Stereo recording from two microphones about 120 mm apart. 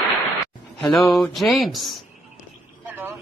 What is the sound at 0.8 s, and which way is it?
Speech, centre (ahead or behind).